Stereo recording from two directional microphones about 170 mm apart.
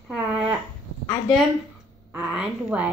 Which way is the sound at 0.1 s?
10° right (ahead or behind).